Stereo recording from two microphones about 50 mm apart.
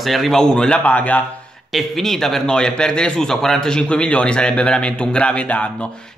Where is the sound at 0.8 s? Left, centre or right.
Left.